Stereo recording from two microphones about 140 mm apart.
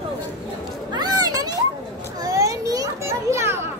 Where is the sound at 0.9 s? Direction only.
30° right (ahead or behind).